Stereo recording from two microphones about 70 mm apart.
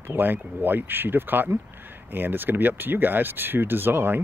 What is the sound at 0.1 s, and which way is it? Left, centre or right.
Speech, right.